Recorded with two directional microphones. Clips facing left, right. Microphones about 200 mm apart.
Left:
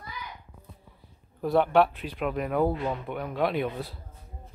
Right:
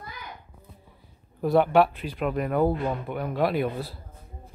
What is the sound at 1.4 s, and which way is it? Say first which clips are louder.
Speech: right 2 dB; 5° right (ahead or behind).